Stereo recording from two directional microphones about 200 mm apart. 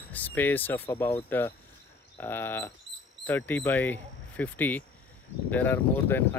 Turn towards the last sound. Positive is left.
turn(degrees=10)  # may be behind; listen again after turning